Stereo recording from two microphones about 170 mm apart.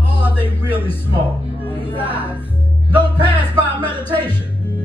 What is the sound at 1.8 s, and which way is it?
Music, 30° left (ahead or behind).